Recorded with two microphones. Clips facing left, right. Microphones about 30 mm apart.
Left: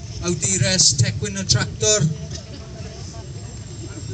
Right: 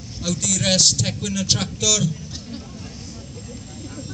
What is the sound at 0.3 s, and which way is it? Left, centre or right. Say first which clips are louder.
A man's voice: right 1 dB; right.